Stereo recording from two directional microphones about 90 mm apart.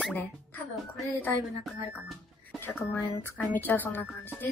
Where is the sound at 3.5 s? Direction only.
20° left (ahead or behind).